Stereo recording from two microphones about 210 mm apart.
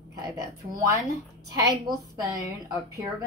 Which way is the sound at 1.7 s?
15° right (ahead or behind).